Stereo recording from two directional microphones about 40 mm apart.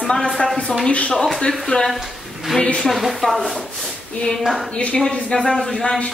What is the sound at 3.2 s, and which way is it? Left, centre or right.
Speech, centre.